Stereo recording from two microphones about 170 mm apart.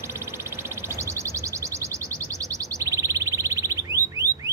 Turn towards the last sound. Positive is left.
turn(degrees=-20)  # may be behind; listen again after turning